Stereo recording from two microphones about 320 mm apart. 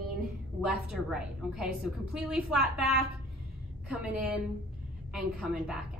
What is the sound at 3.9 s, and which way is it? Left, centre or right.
A woman's voice, centre.